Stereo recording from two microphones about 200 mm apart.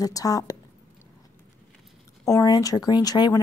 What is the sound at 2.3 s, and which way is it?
Speech, 15° left (ahead or behind).